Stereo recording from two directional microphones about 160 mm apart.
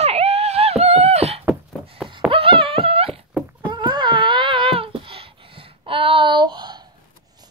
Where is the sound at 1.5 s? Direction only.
5° right (ahead or behind).